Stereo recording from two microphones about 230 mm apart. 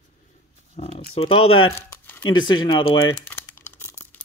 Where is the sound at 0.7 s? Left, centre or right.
Left.